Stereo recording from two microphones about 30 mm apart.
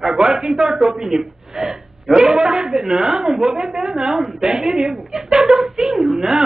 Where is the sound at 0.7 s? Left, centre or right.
Right.